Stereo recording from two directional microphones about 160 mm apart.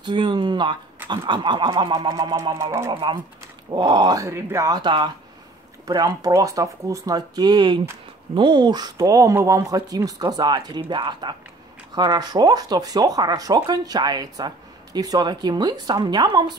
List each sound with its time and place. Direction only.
0.0 s speech: 30° right (ahead or behind)
2.9 s speech: 30° right (ahead or behind)